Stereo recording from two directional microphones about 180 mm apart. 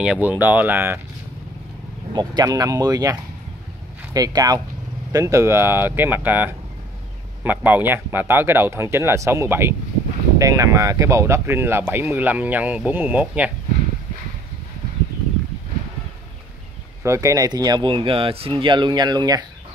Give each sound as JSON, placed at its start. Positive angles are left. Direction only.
{"t": 0.0, "sound": "speech", "side_deg": -5}
{"t": 2.1, "sound": "speech", "side_deg": -20}
{"t": 17.0, "sound": "speech", "side_deg": -15}